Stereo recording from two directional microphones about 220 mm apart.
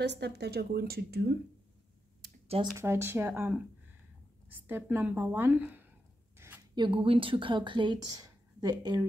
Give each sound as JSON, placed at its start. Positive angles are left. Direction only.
{"t": 0.0, "sound": "a woman's voice", "side_deg": -50}
{"t": 2.4, "sound": "speech", "side_deg": -25}
{"t": 2.7, "sound": "speech", "side_deg": -10}